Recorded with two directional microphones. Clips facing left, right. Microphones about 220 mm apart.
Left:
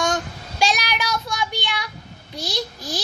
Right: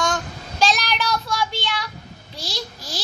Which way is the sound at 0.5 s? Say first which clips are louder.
Right 1 dB; 10° left (ahead or behind).